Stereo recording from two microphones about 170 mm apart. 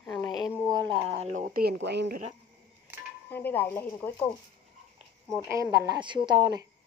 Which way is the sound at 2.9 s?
10° right (ahead or behind).